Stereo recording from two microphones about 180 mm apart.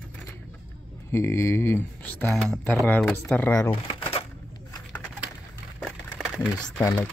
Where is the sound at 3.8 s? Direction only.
30° left (ahead or behind).